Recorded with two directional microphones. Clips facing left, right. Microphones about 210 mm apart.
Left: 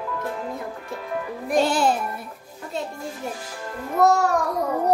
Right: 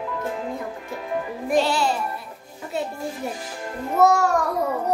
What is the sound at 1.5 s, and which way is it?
Music, 50° left (ahead or behind).